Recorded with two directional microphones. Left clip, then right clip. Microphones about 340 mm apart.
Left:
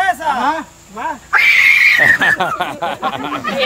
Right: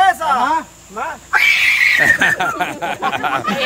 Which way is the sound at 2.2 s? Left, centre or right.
Centre.